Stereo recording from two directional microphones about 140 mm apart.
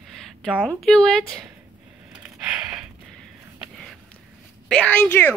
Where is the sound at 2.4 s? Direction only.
5° right (ahead or behind).